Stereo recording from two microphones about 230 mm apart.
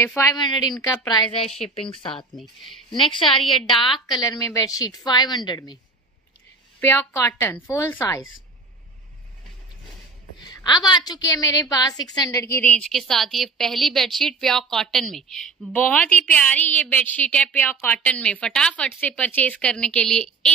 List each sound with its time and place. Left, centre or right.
0.0 s a woman's voice: centre
6.8 s a woman's voice: centre
10.4 s a woman's voice: centre